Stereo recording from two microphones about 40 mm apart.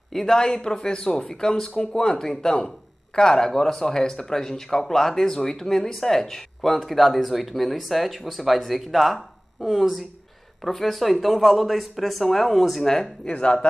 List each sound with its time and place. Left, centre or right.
0.1 s speech: centre
13.3 s speech: left